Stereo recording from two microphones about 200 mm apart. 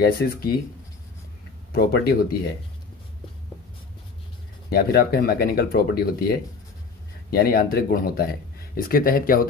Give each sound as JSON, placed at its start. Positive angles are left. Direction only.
{"t": 0.0, "sound": "speech", "side_deg": 50}
{"t": 1.7, "sound": "speech", "side_deg": 50}
{"t": 4.6, "sound": "speech", "side_deg": 50}